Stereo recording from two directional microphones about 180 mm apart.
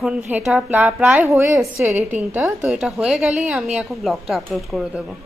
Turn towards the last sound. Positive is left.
turn(degrees=0)  # may be behind; listen again after turning